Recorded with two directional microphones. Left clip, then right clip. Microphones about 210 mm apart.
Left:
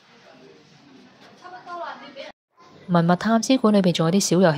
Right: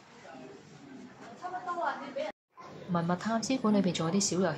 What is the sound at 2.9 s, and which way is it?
Speech, 45° left (ahead or behind).